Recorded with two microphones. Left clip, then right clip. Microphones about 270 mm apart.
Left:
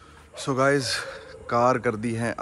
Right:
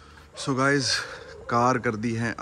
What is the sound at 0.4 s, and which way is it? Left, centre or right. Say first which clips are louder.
Speech: left 1 dB; centre.